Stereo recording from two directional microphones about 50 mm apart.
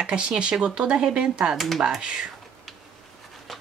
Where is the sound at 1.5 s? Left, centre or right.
Centre.